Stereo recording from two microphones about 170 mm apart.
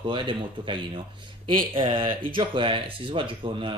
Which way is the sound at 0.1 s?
30° right (ahead or behind).